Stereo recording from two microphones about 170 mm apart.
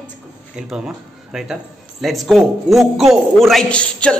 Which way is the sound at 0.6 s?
5° right (ahead or behind).